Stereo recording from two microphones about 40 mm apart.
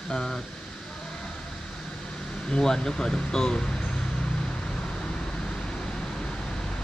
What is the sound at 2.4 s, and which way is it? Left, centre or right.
Air conditioning, centre.